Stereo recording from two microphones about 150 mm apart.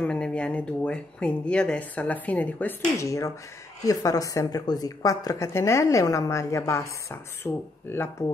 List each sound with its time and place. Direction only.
0.0 s speech: 5° left (ahead or behind)
3.0 s a woman's voice: 20° left (ahead or behind)